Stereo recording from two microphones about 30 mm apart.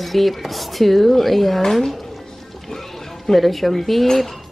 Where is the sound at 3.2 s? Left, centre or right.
Centre.